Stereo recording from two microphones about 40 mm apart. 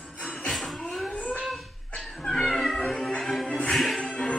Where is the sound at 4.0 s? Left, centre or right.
Left.